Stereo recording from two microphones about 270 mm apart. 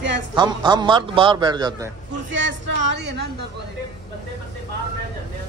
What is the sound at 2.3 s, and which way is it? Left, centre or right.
Speech, right.